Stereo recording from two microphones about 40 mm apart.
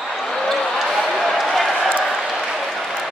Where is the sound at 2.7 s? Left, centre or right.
Centre.